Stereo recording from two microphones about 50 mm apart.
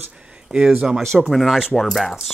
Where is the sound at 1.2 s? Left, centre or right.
Centre.